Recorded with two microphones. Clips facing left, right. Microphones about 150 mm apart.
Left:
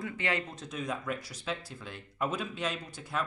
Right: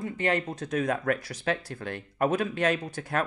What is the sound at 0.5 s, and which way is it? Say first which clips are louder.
Speech: right 8 dB; 65° right (ahead or behind).